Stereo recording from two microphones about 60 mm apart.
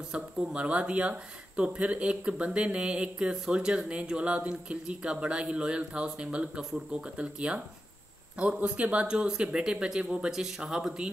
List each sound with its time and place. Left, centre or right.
0.1 s speech: centre